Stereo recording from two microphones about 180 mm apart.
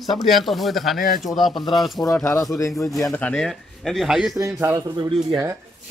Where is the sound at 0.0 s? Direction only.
Centre (ahead or behind).